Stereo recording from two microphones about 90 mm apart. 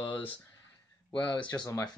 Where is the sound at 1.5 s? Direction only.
30° left (ahead or behind).